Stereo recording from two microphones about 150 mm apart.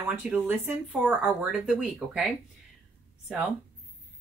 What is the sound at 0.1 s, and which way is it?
A woman's voice, 10° right (ahead or behind).